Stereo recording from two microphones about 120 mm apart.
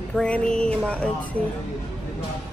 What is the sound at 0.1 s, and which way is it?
Speech, 10° left (ahead or behind).